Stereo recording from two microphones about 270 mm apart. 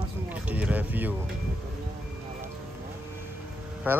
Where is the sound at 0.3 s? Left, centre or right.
Centre.